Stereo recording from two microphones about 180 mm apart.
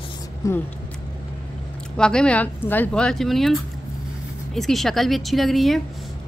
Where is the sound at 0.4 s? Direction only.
15° left (ahead or behind).